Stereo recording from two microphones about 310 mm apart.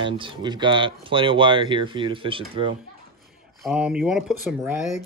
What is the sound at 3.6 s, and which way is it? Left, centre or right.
Speech, centre.